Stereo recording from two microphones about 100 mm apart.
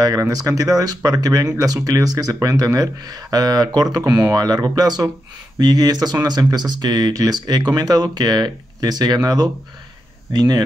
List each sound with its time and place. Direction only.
0.0 s speech: 35° right (ahead or behind)